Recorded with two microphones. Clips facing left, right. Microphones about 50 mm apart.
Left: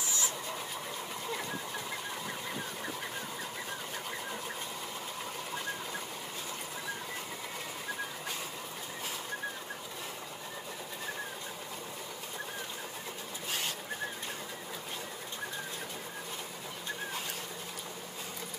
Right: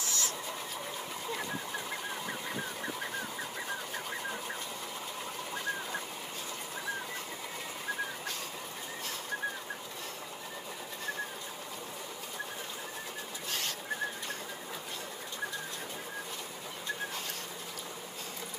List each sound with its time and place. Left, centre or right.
0.0 s sewing machine: centre
13.5 s bird: centre